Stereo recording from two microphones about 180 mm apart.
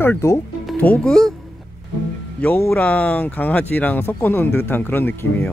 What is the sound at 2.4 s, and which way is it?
Speech, 10° left (ahead or behind).